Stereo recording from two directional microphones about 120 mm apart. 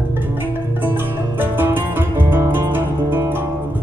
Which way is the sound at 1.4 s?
15° right (ahead or behind).